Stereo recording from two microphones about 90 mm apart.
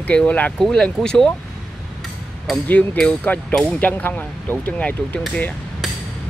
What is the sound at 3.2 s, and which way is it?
Speech, 20° left (ahead or behind).